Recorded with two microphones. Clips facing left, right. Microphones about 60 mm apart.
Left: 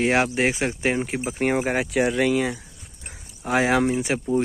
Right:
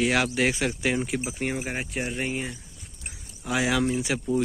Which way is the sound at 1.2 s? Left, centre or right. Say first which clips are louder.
Left 7 dB; left.